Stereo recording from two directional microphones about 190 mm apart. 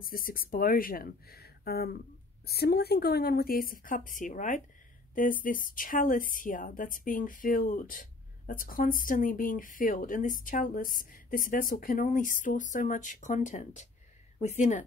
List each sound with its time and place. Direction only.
0.0 s a woman's voice: 50° left (ahead or behind)